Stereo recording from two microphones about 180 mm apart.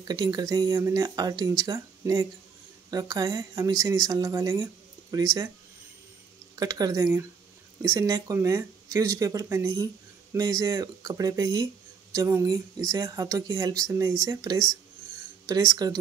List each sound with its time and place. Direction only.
0.1 s speech: 20° right (ahead or behind)
6.5 s speech: 20° right (ahead or behind)